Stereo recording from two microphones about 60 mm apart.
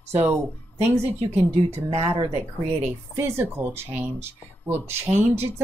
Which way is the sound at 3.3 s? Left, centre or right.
Right.